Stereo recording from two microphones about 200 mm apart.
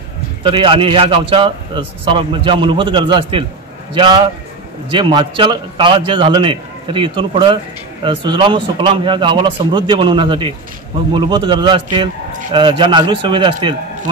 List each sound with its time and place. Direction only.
0.4 s a man's voice: 25° right (ahead or behind)